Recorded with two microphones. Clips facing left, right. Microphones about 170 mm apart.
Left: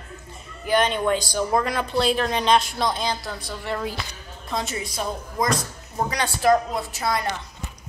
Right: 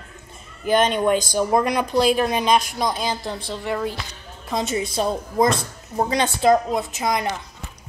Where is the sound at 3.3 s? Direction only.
25° right (ahead or behind).